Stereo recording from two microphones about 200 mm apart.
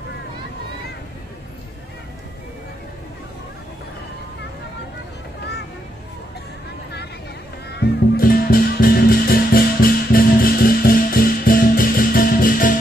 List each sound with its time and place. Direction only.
7.7 s music: 50° left (ahead or behind)